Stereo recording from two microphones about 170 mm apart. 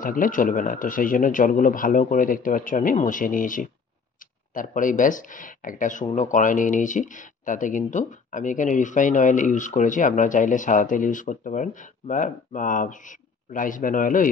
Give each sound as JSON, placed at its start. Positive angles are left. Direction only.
{"t": 0.0, "sound": "speech", "side_deg": 50}